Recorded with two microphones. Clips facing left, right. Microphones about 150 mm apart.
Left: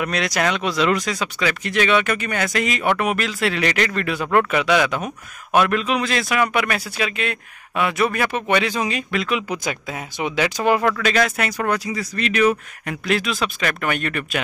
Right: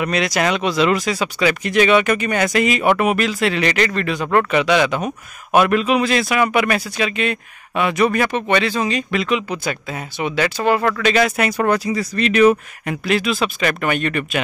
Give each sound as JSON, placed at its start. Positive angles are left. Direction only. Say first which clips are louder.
{"t": 0.0, "sound": "speech", "louder": "right 3 dB", "side_deg": 0}
{"t": 9.1, "sound": "speech", "louder": "right 3 dB", "side_deg": 0}
{"t": 9.5, "sound": "speech", "louder": "right 2 dB", "side_deg": 10}
{"t": 11.2, "sound": "speech", "louder": "right 5 dB", "side_deg": -15}
{"t": 11.6, "sound": "speech", "louder": "right 4 dB", "side_deg": -30}
{"t": 12.8, "sound": "speech", "louder": "right 3 dB", "side_deg": 0}